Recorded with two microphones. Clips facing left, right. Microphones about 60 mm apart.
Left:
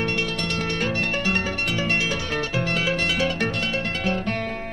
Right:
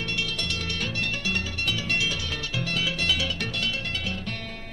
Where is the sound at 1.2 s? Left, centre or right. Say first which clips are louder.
Left 5 dB; left.